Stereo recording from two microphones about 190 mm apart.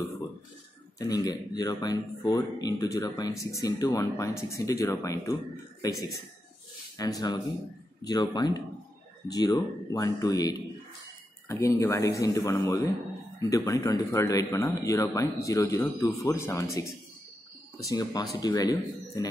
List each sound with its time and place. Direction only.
0.9 s speech: 20° left (ahead or behind)
7.0 s speech: 20° left (ahead or behind)